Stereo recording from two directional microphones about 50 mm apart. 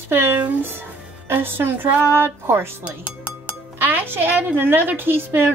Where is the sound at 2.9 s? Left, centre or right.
Right.